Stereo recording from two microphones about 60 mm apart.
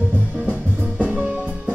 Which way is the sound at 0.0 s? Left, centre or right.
Right.